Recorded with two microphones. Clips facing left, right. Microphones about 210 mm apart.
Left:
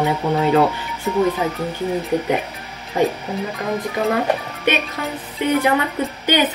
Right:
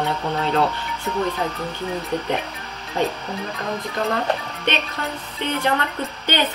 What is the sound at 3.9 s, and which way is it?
Speech, 10° left (ahead or behind).